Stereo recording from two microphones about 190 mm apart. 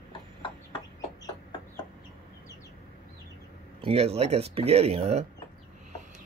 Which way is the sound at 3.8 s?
30° right (ahead or behind).